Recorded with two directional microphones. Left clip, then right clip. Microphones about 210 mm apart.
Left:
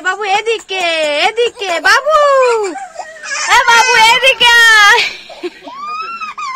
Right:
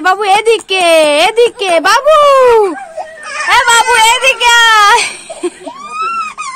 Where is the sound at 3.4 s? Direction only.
Centre (ahead or behind).